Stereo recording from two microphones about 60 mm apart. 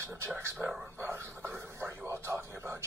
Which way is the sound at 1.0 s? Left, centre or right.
Right.